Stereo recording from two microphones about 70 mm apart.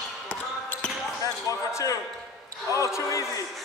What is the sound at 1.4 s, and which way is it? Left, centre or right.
Basketball bounce, left.